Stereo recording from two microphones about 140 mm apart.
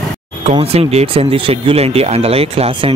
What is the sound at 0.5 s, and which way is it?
Speech, 45° right (ahead or behind).